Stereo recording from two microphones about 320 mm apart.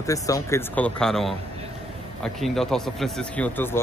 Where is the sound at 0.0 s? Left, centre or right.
Centre.